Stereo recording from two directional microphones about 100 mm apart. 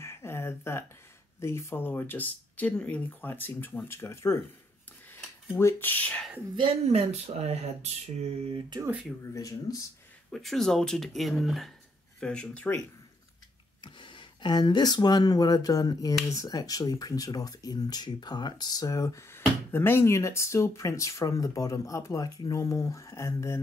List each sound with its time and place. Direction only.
0.0 s a sound: 25° left (ahead or behind)
1.4 s speech: 25° left (ahead or behind)
5.6 s speech: 25° left (ahead or behind)
6.9 s speech: 90° right
9.3 s speech: 35° left (ahead or behind)
10.3 s speech: 5° left (ahead or behind)
13.7 s speech: 55° left (ahead or behind); by 19.2 s 35° left (ahead or behind)
19.3 s speech: 25° left (ahead or behind)